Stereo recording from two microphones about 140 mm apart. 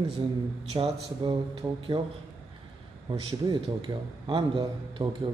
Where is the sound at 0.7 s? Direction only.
45° right (ahead or behind).